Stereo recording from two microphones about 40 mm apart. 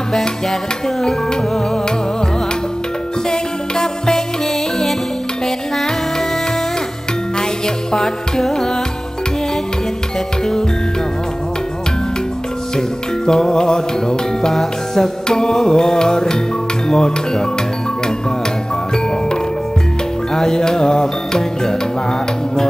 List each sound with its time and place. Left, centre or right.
0.5 s music: centre
3.3 s music: centre
7.3 s music: centre
12.7 s music: centre
20.3 s music: centre